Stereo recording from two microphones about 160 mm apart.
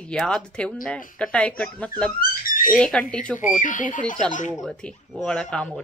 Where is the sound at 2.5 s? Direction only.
60° left (ahead or behind).